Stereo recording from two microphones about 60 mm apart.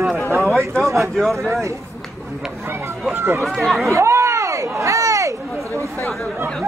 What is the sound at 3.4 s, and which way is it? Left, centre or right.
Speech, centre.